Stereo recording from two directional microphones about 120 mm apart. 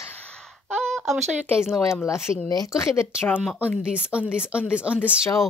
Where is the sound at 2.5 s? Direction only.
30° left (ahead or behind).